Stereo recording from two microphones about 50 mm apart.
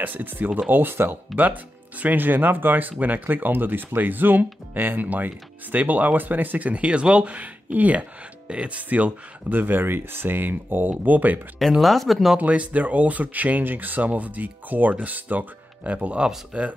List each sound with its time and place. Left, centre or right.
0.0 s speech: right
6.7 s speech: right
11.8 s speech: centre
12.4 s speech: right